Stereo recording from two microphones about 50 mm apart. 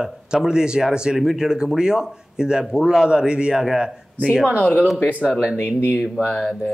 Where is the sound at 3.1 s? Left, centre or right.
Centre.